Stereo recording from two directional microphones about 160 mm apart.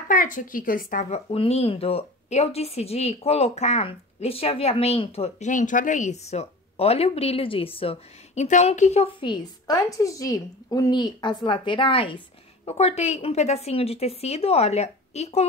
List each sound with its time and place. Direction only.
0.1 s speech: 55° left (ahead or behind)
1.1 s speech: 40° left (ahead or behind)
8.5 s a woman's voice: 50° left (ahead or behind)
9.2 s a woman's voice: 25° left (ahead or behind); by 15.4 s 40° left (ahead or behind)